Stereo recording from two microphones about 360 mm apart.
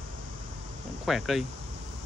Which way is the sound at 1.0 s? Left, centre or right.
Centre.